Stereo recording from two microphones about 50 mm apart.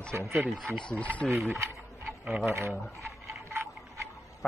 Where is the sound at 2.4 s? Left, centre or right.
Right.